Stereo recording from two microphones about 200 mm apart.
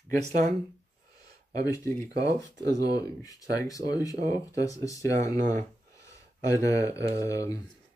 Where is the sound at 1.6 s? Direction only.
15° left (ahead or behind).